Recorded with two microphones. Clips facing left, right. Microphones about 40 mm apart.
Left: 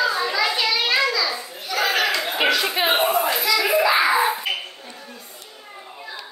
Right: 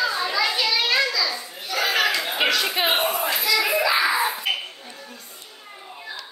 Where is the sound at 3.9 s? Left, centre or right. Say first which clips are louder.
Left 3 dB; left.